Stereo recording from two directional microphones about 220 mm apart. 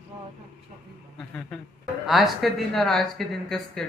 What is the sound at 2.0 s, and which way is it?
Speech, centre (ahead or behind).